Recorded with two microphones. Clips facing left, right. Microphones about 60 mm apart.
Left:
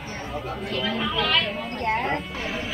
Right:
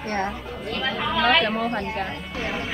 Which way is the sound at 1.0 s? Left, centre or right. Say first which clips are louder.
Right 7 dB; right.